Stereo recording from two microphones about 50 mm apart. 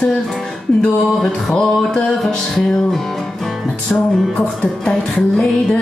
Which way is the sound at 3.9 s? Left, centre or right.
Left.